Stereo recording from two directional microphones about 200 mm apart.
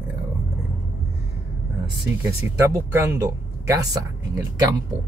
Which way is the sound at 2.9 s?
15° right (ahead or behind).